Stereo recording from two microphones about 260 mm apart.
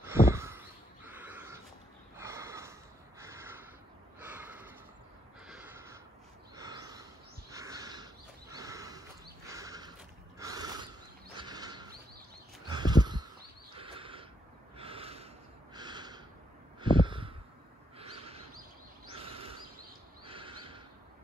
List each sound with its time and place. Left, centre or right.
0.0 s a sound: centre
2.1 s snort: centre
3.2 s crow: centre
4.2 s snort: centre
5.5 s crow: centre
6.5 s snort: centre
9.5 s a sound: centre
11.3 s mechanisms: centre
12.7 s a sound: centre
14.8 s snort: right
16.8 s a sound: centre
20.2 s neigh: centre